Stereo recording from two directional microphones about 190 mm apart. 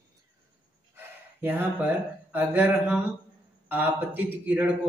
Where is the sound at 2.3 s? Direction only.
10° right (ahead or behind).